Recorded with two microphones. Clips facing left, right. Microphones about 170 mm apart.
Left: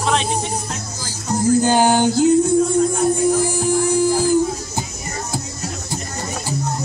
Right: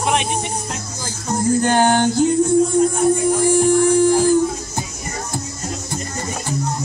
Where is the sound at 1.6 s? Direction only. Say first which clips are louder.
Even; 5° left (ahead or behind).